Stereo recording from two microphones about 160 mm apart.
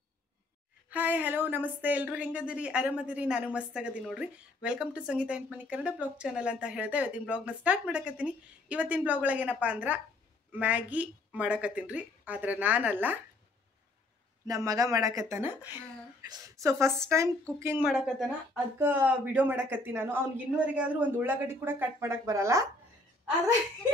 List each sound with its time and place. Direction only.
0.8 s speech: 10° right (ahead or behind)
14.5 s speech: 20° right (ahead or behind)
17.8 s speech: 5° right (ahead or behind)